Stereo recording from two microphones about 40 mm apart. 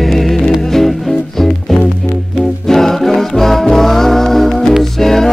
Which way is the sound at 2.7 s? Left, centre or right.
Centre.